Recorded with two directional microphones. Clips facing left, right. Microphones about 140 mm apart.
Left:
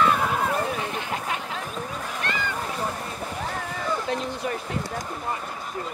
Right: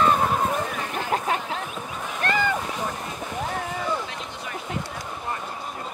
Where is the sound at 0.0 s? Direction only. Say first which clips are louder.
Right 1 dB; 35° right (ahead or behind).